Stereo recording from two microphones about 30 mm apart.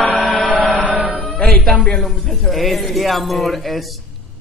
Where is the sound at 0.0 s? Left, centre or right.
Left.